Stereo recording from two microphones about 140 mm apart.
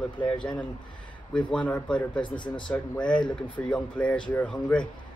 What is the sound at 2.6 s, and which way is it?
Speech, 5° left (ahead or behind).